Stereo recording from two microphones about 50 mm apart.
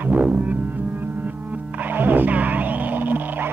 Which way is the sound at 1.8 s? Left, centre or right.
Right.